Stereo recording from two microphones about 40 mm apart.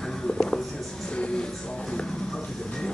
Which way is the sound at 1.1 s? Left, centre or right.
Left.